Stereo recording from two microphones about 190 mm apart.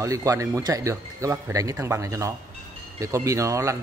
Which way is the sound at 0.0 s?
15° right (ahead or behind).